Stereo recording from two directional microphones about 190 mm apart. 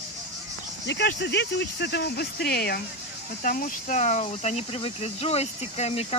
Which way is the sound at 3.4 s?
45° left (ahead or behind).